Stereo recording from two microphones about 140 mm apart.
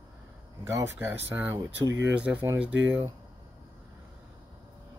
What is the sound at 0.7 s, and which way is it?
Speech, 20° right (ahead or behind).